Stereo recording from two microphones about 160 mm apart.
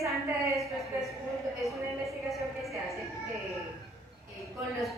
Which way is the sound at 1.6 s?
Centre (ahead or behind).